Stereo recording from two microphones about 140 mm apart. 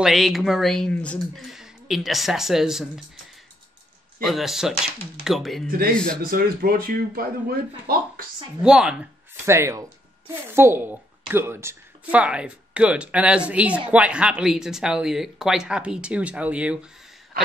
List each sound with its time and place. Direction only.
0.0 s speech: centre (ahead or behind)
4.2 s speech: centre (ahead or behind)
6.3 s speech: 90° right
8.6 s speech: 5° right (ahead or behind)
9.5 s speech: 20° right (ahead or behind)